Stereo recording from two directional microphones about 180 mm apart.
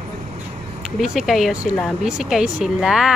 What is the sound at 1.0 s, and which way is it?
Speech, centre (ahead or behind).